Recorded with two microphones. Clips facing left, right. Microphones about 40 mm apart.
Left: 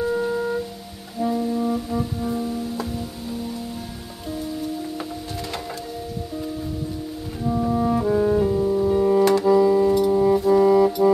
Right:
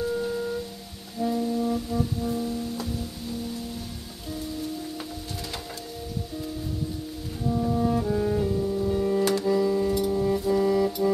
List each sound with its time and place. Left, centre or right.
0.0 s music: centre
1.2 s brass instrument: centre
7.4 s brass instrument: left
8.9 s music: centre